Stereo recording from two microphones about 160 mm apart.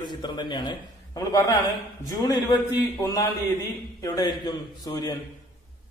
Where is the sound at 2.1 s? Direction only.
25° left (ahead or behind).